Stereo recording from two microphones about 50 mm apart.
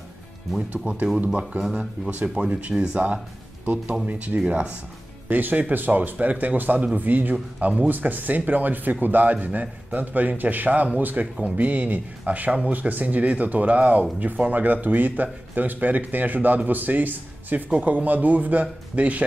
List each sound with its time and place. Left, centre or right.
1.8 s a man's voice: right
2.2 s a man's voice: centre
5.3 s a man's voice: right